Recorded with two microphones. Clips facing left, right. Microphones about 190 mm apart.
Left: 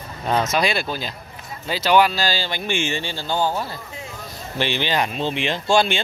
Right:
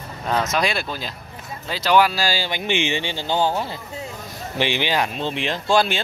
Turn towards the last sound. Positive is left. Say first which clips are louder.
# left 1 dB
turn(degrees=0)  # may be behind; listen again after turning